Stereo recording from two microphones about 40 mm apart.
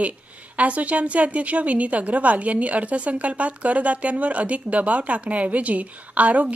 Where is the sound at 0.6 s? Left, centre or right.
Right.